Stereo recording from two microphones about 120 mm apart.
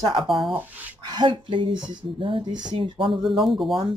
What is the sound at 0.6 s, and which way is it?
Speech, 15° right (ahead or behind).